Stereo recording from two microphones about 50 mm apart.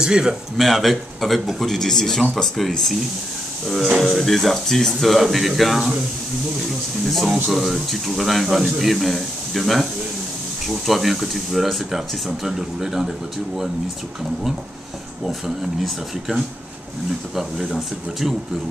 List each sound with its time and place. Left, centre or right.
0.0 s speech: centre
0.6 s speech: centre
4.0 s speech: centre
15.2 s speech: centre